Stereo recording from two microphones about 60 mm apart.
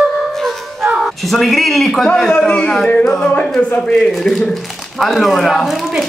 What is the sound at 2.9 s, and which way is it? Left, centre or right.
Music, centre.